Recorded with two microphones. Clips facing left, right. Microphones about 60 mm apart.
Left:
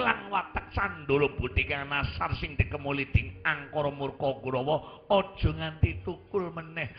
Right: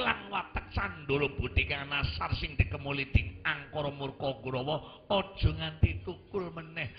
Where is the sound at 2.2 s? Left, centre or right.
Centre.